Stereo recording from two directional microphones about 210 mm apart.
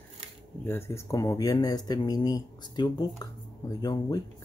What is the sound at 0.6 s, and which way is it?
Speech, 10° left (ahead or behind).